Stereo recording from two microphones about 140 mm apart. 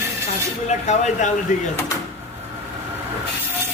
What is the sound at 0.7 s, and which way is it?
Speech, 55° left (ahead or behind).